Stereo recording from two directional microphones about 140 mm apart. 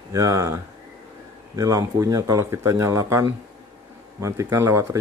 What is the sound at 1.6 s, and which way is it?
Speech, 25° right (ahead or behind).